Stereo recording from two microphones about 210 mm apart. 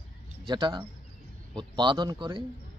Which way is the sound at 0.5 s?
20° right (ahead or behind).